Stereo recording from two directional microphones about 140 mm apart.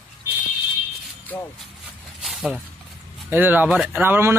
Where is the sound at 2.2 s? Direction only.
Centre (ahead or behind).